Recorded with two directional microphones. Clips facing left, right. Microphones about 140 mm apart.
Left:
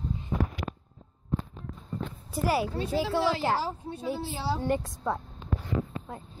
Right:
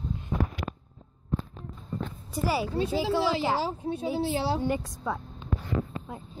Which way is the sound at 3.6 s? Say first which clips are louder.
Right 3 dB; 70° right (ahead or behind).